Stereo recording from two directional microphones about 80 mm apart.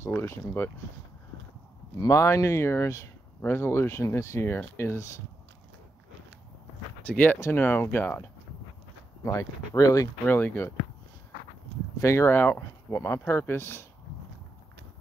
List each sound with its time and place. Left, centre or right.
0.0 s speech: left
2.0 s speech: left
7.1 s speech: left
9.2 s speech: left
10.3 s speech: left
12.0 s speech: left
12.4 s speech: left